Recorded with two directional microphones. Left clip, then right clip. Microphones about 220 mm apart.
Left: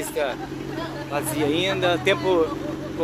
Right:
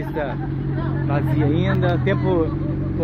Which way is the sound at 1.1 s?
10° left (ahead or behind).